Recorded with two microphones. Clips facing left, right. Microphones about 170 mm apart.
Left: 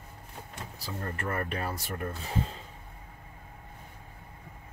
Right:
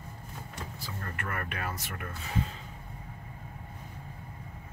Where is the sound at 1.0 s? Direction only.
30° left (ahead or behind).